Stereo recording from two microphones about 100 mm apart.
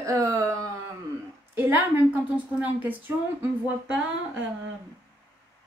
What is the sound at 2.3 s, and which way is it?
Speech, 15° right (ahead or behind).